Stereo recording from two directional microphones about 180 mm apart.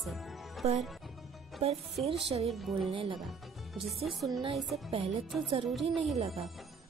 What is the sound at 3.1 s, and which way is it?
Speech, centre (ahead or behind).